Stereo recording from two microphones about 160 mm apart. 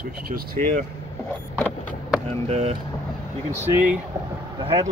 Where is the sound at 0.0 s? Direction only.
70° right (ahead or behind).